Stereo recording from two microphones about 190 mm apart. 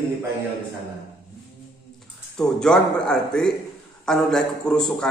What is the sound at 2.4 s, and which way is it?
A man's voice, 5° left (ahead or behind).